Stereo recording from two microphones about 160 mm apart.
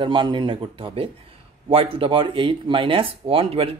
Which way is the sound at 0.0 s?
30° right (ahead or behind).